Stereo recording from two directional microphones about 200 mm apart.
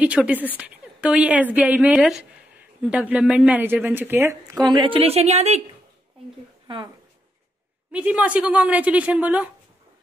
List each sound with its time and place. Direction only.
0.0 s a woman's voice: 5° right (ahead or behind)
4.6 s a woman's voice: 25° right (ahead or behind)
7.9 s a woman's voice: 5° right (ahead or behind)